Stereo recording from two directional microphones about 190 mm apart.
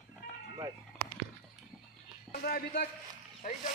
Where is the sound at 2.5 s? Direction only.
50° left (ahead or behind).